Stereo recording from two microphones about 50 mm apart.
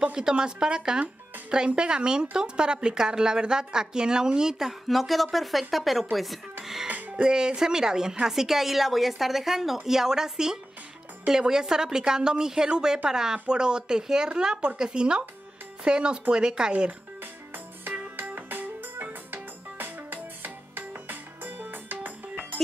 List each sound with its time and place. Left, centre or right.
0.0 s a woman's voice: centre
6.9 s music: right
7.2 s a woman's voice: centre
18.1 s music: right